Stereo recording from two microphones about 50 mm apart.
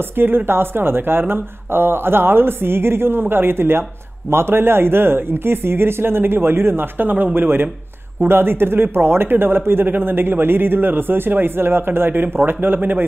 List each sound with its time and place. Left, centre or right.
0.0 s a man's voice: right